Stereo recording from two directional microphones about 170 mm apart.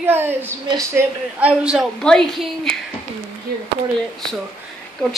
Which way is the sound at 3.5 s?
65° right (ahead or behind).